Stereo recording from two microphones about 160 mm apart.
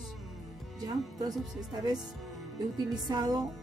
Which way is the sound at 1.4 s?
Centre (ahead or behind).